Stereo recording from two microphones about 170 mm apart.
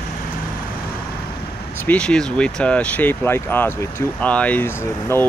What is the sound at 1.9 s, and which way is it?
Speech, 5° left (ahead or behind).